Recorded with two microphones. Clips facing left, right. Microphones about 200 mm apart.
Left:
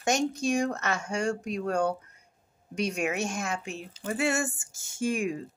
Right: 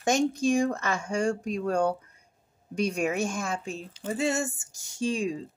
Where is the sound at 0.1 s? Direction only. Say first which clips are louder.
Right 3 dB; 50° right (ahead or behind).